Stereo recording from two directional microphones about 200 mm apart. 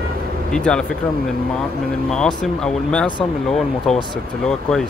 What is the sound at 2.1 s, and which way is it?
Speech, 5° left (ahead or behind).